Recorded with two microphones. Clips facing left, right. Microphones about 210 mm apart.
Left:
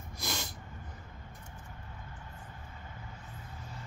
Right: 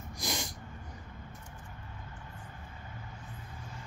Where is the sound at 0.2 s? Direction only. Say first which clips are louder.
Right 2 dB; 15° right (ahead or behind).